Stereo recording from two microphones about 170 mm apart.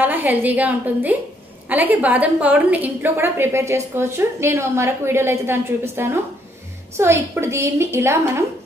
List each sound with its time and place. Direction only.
0.0 s a woman's voice: 10° right (ahead or behind)